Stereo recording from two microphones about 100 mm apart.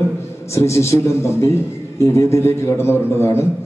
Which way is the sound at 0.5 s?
30° left (ahead or behind).